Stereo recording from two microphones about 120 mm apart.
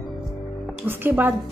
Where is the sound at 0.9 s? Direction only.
15° right (ahead or behind).